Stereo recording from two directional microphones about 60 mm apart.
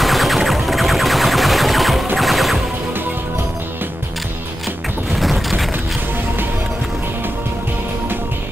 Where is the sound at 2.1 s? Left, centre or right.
Centre.